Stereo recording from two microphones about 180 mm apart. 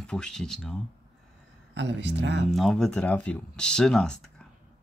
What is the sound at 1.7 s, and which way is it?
Speech, 75° right (ahead or behind).